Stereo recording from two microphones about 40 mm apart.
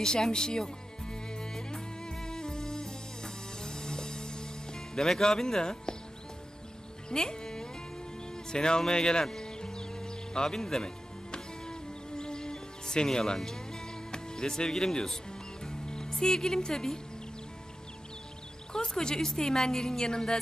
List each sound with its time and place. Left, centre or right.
0.0 s music: centre
7.1 s music: centre
8.5 s a woman's voice: centre
8.8 s music: centre
14.1 s speech: centre
15.6 s music: centre
16.2 s a woman's voice: centre
18.7 s a woman's voice: centre